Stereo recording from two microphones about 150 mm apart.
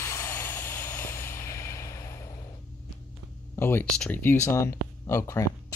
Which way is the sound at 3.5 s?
15° left (ahead or behind).